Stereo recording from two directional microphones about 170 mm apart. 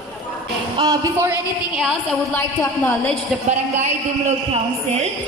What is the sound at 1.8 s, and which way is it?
A woman's voice, centre (ahead or behind).